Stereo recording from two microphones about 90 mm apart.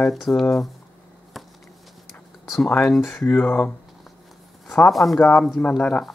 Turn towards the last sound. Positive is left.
turn(degrees=15)  # may be behind; listen again after turning